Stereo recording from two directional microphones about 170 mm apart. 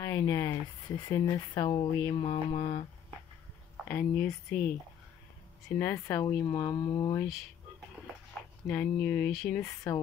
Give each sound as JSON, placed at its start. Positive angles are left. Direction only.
{"t": 0.0, "sound": "speech", "side_deg": 20}
{"t": 3.9, "sound": "speech", "side_deg": 10}
{"t": 5.8, "sound": "speech", "side_deg": 15}
{"t": 8.6, "sound": "speech", "side_deg": 10}
{"t": 9.3, "sound": "speech", "side_deg": 0}